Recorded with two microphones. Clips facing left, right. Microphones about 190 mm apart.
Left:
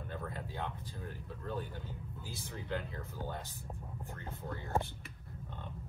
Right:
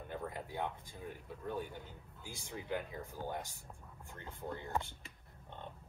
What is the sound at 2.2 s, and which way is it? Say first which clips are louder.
Speech: right 1 dB; 15° right (ahead or behind).